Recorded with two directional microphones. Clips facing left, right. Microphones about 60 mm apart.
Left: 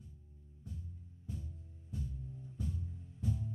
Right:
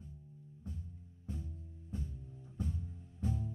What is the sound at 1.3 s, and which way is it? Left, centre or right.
Music, right.